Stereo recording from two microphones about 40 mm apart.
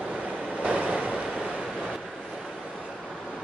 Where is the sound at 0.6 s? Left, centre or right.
Right.